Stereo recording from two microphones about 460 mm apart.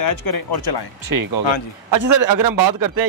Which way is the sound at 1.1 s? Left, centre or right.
Right.